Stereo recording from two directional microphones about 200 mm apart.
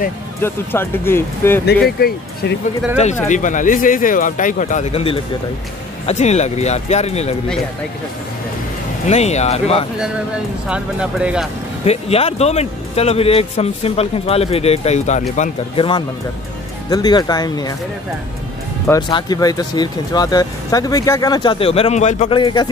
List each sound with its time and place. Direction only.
0.4 s speech: 10° left (ahead or behind)
2.0 s speech: 50° left (ahead or behind)
3.3 s speech: 40° left (ahead or behind)
9.0 s speech: 35° left (ahead or behind)
10.7 s speech: 5° right (ahead or behind)
11.8 s speech: 30° left (ahead or behind)
16.9 s speech: 20° left (ahead or behind)
18.9 s speech: 20° left (ahead or behind)
22.4 s speech: 20° left (ahead or behind)